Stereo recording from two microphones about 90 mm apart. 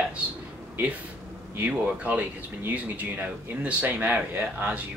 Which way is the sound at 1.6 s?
15° right (ahead or behind).